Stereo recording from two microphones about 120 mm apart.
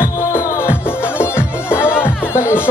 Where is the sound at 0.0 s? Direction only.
20° left (ahead or behind).